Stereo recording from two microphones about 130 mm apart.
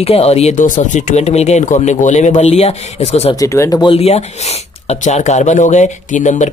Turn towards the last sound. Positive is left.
turn(degrees=70)  # may be behind; listen again after turning